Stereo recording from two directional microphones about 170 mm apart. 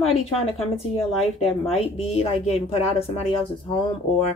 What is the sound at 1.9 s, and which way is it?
Speech, 35° left (ahead or behind).